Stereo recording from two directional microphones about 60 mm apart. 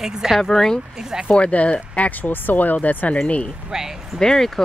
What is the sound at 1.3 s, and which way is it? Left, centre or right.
Speech, left.